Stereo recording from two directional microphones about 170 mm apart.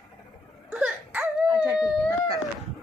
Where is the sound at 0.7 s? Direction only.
5° right (ahead or behind).